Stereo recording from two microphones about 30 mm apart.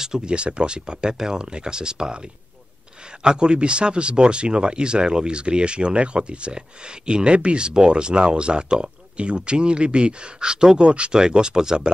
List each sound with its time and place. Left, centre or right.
0.0 s speech: right
11.1 s speech: right